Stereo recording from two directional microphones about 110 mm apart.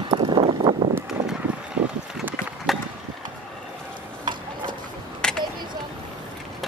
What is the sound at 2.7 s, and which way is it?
Mechanisms, centre (ahead or behind).